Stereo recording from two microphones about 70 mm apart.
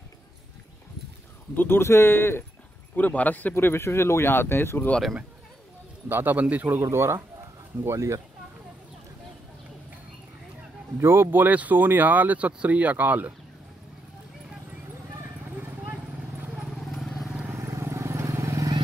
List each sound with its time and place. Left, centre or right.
1.5 s speech: left
3.0 s speech: left
3.5 s speech: left
6.0 s speech: right
6.8 s speech: right
11.0 s speech: right
15.5 s vehicle: right
16.4 s vehicle: centre
16.7 s vehicle: centre
17.6 s vehicle: right